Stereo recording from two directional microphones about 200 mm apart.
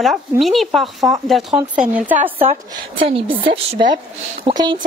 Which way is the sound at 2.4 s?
30° right (ahead or behind).